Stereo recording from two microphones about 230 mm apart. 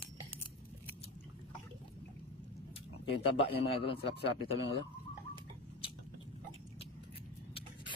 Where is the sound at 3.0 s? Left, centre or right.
Left.